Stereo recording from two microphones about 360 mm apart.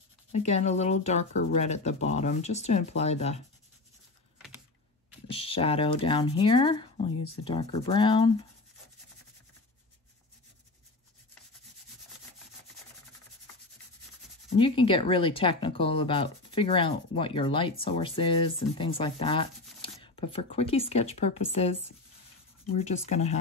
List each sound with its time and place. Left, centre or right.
0.3 s speech: centre
5.3 s speech: centre
14.6 s speech: centre